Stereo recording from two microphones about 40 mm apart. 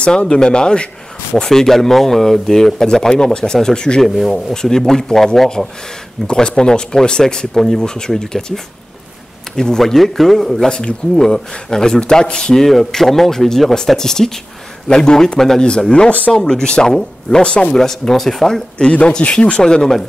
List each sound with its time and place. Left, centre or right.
0.0 s speech: left
4.0 s speech: centre
4.6 s speech: centre
6.2 s speech: left
9.6 s speech: centre
12.5 s speech: centre
14.9 s speech: left
15.3 s speech: centre
16.1 s speech: left
16.3 s speech: centre
17.7 s speech: centre
18.8 s speech: left
19.6 s speech: centre